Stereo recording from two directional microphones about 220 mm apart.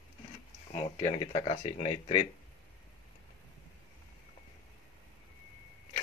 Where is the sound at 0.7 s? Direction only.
25° left (ahead or behind).